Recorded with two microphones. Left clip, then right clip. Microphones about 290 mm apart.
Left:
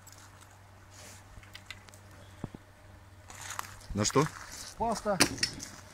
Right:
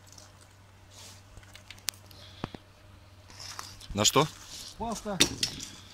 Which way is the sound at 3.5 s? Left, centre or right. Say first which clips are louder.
Right 2 dB; centre.